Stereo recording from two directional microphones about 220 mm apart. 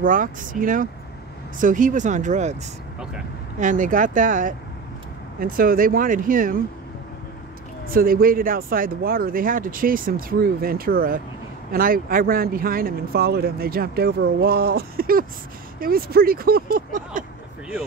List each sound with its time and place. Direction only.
0.0 s speech: 40° right (ahead or behind)
3.5 s speech: 35° right (ahead or behind)
7.9 s speech: 40° right (ahead or behind)